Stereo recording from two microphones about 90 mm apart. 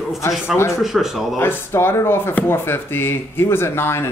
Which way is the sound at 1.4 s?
25° left (ahead or behind).